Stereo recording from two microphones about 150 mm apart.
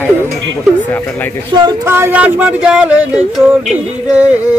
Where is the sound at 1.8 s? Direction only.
15° right (ahead or behind).